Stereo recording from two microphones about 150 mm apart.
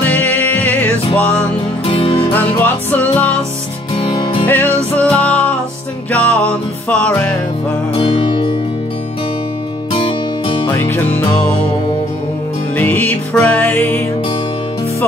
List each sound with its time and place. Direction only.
0.0 s music: 10° left (ahead or behind)
1.9 s music: 35° left (ahead or behind)
2.3 s music: 10° left (ahead or behind)
4.0 s music: 35° left (ahead or behind)
4.5 s music: 10° left (ahead or behind)
8.0 s music: 35° left (ahead or behind)
9.9 s music: 35° left (ahead or behind)
10.7 s music: 15° left (ahead or behind)
12.7 s music: 10° left (ahead or behind)